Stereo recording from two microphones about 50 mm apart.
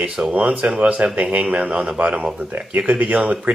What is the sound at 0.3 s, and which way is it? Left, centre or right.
Speech, right.